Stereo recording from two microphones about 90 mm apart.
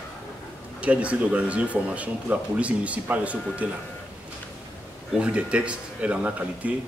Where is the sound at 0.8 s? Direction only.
15° right (ahead or behind).